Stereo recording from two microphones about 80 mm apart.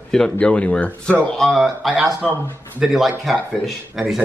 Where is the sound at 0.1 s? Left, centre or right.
Centre.